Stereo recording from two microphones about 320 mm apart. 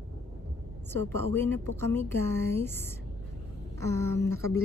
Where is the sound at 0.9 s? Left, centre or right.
Centre.